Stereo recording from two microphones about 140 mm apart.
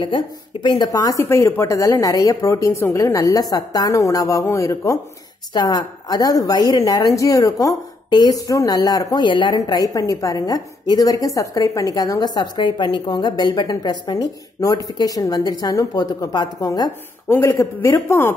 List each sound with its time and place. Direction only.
0.0 s a woman's voice: 35° left (ahead or behind); by 18.3 s 20° left (ahead or behind)